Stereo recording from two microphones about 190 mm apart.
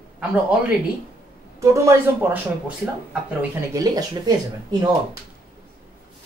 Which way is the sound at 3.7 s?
20° right (ahead or behind).